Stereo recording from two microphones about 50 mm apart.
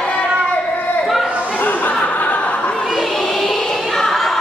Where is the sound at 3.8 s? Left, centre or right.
Centre.